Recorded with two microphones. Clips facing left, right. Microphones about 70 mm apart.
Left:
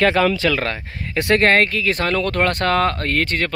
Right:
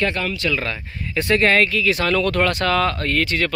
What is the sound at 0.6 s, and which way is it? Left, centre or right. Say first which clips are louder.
Speech: left 3 dB; left.